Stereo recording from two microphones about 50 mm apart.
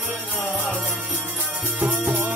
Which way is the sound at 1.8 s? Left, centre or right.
Right.